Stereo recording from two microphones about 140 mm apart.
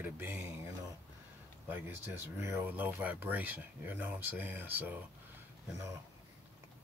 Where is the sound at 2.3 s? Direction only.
15° right (ahead or behind).